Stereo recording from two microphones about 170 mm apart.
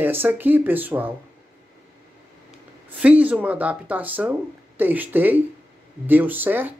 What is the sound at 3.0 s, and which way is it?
A man's voice, 10° right (ahead or behind).